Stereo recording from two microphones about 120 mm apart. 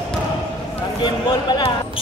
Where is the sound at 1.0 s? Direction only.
40° left (ahead or behind).